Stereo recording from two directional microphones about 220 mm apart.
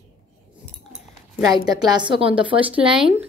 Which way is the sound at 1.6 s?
20° right (ahead or behind).